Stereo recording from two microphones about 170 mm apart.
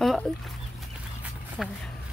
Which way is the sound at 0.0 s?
Centre (ahead or behind).